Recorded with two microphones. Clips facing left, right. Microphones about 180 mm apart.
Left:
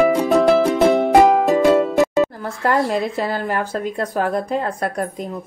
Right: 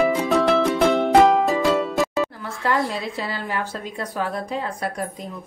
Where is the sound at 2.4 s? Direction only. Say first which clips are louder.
Left 4 dB; 45° left (ahead or behind).